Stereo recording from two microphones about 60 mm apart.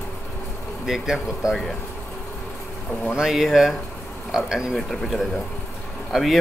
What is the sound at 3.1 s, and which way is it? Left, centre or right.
Speech, centre.